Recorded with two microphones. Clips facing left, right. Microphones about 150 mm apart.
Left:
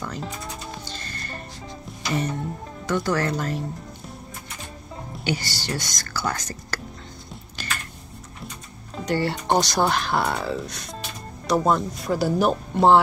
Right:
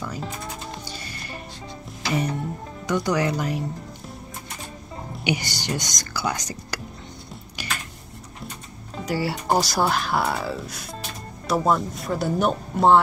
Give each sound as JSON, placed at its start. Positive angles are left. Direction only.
{"t": 0.0, "sound": "speech", "side_deg": -5}
{"t": 0.8, "sound": "music", "side_deg": -10}
{"t": 2.9, "sound": "speech", "side_deg": -15}
{"t": 5.2, "sound": "speech", "side_deg": -15}
{"t": 7.6, "sound": "typing", "side_deg": -10}
{"t": 8.9, "sound": "speech", "side_deg": -5}